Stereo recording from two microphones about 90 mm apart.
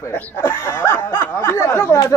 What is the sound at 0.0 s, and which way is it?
A man's voice, 25° left (ahead or behind).